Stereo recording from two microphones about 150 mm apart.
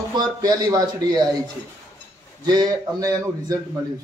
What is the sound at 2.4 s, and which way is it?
A man's voice, 25° right (ahead or behind).